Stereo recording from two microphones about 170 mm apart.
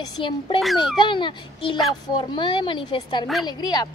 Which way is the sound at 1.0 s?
30° left (ahead or behind).